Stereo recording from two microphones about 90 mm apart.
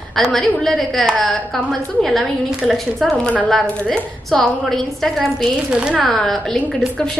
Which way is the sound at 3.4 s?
5° left (ahead or behind).